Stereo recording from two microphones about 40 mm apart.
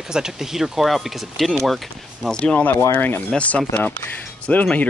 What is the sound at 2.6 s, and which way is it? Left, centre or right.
Speech, left.